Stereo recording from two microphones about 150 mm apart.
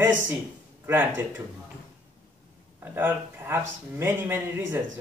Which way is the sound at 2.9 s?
15° right (ahead or behind).